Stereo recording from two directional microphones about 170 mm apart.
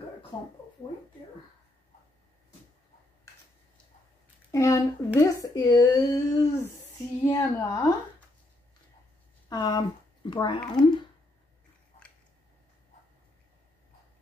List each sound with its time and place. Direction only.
4.5 s speech: 20° left (ahead or behind)
9.5 s speech: 25° left (ahead or behind)